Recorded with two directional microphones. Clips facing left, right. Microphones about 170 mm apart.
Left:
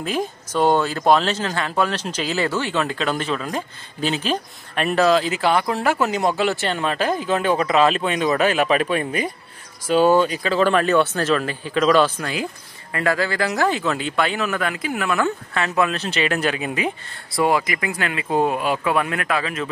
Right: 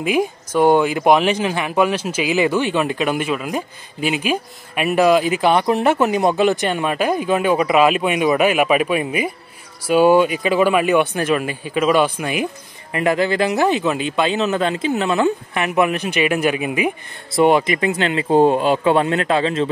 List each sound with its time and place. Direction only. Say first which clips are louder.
0.0 s speech: right 6 dB; 10° right (ahead or behind)
17.3 s speech: right 5 dB; 25° right (ahead or behind)